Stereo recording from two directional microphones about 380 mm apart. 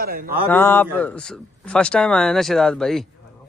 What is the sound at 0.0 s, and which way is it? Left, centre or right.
Speech, right.